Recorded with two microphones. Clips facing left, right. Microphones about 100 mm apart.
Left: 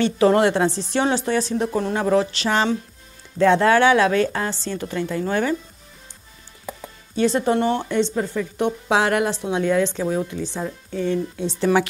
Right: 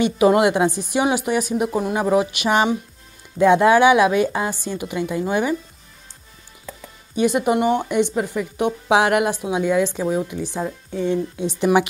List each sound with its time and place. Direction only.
0.0 s a woman's voice: 15° right (ahead or behind)
6.7 s music: 15° left (ahead or behind)
7.2 s a woman's voice: 15° right (ahead or behind)